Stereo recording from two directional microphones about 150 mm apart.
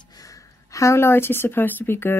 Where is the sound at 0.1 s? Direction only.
25° left (ahead or behind).